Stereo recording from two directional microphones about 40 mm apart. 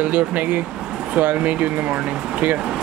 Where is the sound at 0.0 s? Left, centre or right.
Right.